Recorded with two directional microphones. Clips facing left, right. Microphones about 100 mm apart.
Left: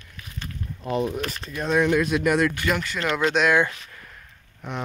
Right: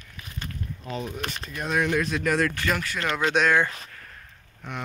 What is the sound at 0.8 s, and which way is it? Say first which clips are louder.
Speech: left 9 dB; 60° left (ahead or behind).